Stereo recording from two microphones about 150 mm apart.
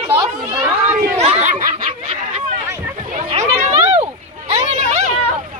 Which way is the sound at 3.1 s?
50° right (ahead or behind).